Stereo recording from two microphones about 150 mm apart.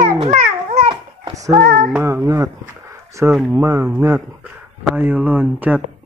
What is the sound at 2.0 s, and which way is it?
Speech, 20° right (ahead or behind).